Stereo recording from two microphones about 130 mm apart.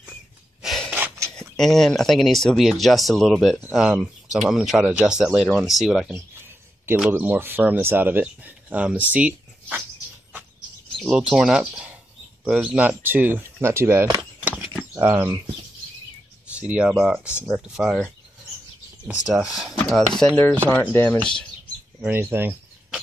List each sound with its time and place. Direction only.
0.6 s gasp: centre (ahead or behind)
0.9 s a sound: 20° right (ahead or behind)
1.4 s speech: 5° left (ahead or behind)
6.1 s bird: 20° right (ahead or behind)
7.1 s speech: 15° right (ahead or behind)
11.0 s speech: 5° right (ahead or behind); by 14.0 s 20° right (ahead or behind)
14.8 s a sound: 15° right (ahead or behind)
16.5 s speech: 10° right (ahead or behind)
19.0 s speech: 5° right (ahead or behind)
20.6 s speech: 15° left (ahead or behind)
22.0 s speech: 15° right (ahead or behind)